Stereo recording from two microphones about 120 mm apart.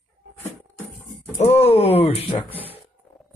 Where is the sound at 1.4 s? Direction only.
60° left (ahead or behind).